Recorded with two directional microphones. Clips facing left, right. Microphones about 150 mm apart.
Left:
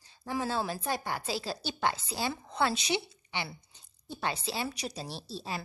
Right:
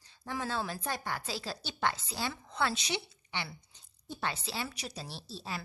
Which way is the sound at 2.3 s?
30° left (ahead or behind).